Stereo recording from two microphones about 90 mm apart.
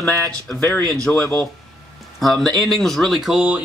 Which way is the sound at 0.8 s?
45° right (ahead or behind).